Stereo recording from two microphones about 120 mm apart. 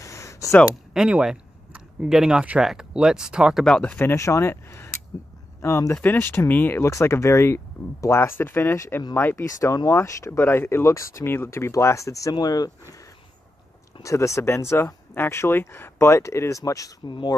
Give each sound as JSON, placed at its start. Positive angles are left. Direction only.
{"t": 0.0, "sound": "a sound", "side_deg": 25}
{"t": 0.9, "sound": "speech", "side_deg": -5}
{"t": 3.6, "sound": "speech", "side_deg": 10}
{"t": 4.1, "sound": "speech", "side_deg": 25}
{"t": 14.0, "sound": "speech", "side_deg": 25}